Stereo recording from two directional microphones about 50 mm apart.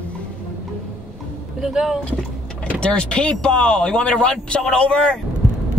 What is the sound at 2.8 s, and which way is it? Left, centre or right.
Speech, left.